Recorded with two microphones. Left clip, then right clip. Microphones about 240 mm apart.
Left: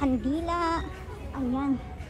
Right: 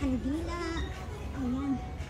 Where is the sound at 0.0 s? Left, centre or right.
Centre.